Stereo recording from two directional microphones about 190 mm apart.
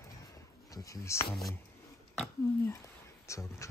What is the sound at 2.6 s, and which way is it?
Speech, 15° left (ahead or behind).